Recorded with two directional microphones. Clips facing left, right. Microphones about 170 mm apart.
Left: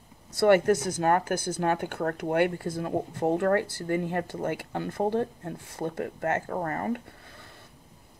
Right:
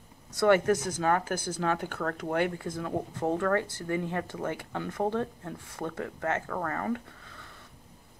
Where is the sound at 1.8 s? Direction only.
35° left (ahead or behind).